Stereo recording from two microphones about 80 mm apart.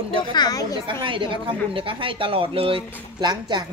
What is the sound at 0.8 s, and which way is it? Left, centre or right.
A woman's voice, right.